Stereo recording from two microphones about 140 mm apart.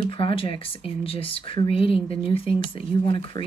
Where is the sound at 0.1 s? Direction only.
40° left (ahead or behind).